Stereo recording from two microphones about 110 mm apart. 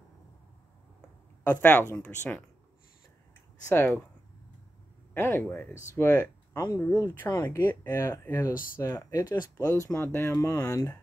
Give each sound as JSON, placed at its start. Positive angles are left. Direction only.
{"t": 1.5, "sound": "speech", "side_deg": 15}
{"t": 3.6, "sound": "speech", "side_deg": 25}
{"t": 5.1, "sound": "speech", "side_deg": 20}
{"t": 6.5, "sound": "speech", "side_deg": 30}